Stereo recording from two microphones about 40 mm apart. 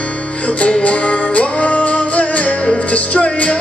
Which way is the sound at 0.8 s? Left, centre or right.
Left.